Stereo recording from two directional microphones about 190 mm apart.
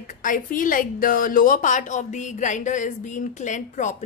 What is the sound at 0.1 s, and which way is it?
A woman's voice, 45° left (ahead or behind).